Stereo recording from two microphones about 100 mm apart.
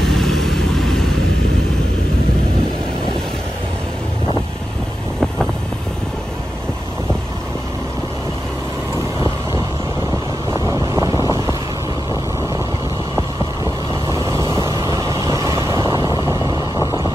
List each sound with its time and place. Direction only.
0.0 s vehicle: 5° left (ahead or behind)
10.7 s vehicle: 35° right (ahead or behind)
14.0 s vehicle: 30° right (ahead or behind)